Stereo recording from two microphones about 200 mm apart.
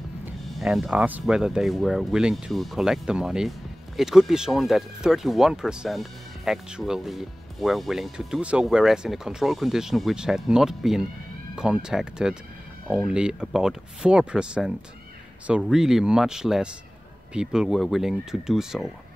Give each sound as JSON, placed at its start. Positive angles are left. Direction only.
{"t": 0.2, "sound": "speech", "side_deg": 0}